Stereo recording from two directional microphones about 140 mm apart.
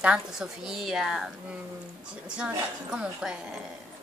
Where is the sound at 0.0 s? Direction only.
5° right (ahead or behind).